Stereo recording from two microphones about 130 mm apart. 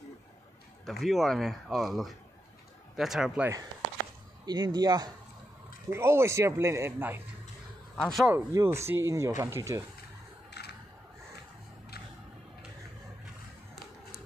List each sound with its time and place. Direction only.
0.8 s speech: centre (ahead or behind)
4.5 s speech: 30° right (ahead or behind)
5.9 s a man's voice: 20° right (ahead or behind)
7.9 s a man's voice: 5° left (ahead or behind)
8.5 s a man's voice: 20° right (ahead or behind)